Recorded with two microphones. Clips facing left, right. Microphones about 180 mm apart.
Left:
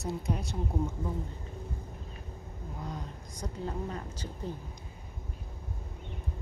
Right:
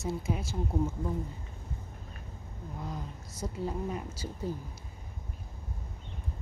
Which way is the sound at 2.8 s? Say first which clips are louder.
Right 1 dB; centre (ahead or behind).